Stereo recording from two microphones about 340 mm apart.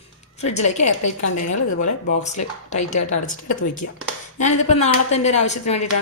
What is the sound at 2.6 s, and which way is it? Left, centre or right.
Speech, left.